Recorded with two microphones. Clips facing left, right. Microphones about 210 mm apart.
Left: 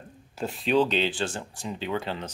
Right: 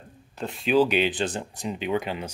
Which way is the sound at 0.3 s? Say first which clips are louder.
Right 1 dB; 5° left (ahead or behind).